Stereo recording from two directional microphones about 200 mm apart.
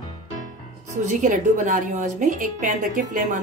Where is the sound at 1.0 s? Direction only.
40° right (ahead or behind).